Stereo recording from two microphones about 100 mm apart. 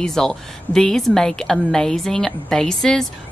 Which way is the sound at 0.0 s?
5° left (ahead or behind).